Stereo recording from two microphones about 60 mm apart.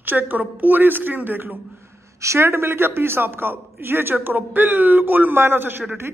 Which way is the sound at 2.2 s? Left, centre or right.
Right.